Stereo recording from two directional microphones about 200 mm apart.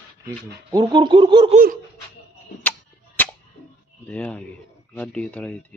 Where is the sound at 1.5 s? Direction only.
40° right (ahead or behind).